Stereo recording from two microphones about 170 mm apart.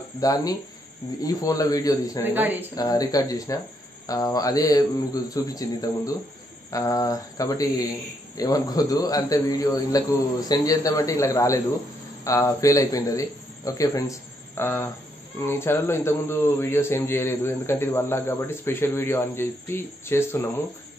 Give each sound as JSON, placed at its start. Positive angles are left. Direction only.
{"t": 0.2, "sound": "speech", "side_deg": 20}
{"t": 2.2, "sound": "speech", "side_deg": -10}
{"t": 2.7, "sound": "a man's voice", "side_deg": 20}